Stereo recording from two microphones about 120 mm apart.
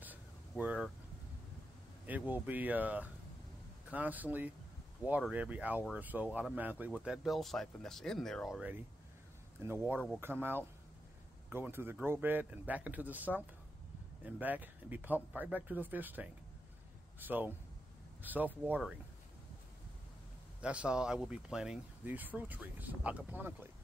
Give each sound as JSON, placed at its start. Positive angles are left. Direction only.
{"t": 0.0, "sound": "a sound", "side_deg": -15}
{"t": 2.0, "sound": "speech", "side_deg": -15}
{"t": 6.9, "sound": "speech", "side_deg": 0}
{"t": 9.6, "sound": "speech", "side_deg": -20}
{"t": 9.9, "sound": "speech", "side_deg": 0}
{"t": 10.2, "sound": "speech", "side_deg": -15}
{"t": 20.6, "sound": "speech", "side_deg": -10}